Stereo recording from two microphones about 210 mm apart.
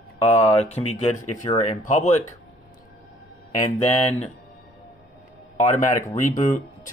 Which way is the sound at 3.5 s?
30° left (ahead or behind).